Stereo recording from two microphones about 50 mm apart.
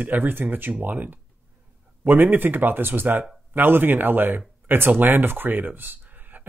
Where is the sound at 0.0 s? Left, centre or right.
Right.